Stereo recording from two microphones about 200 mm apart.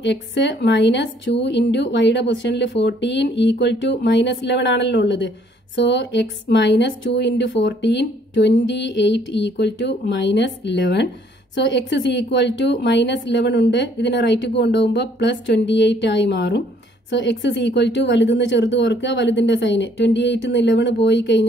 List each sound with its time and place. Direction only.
0.0 s a woman's voice: 60° left (ahead or behind)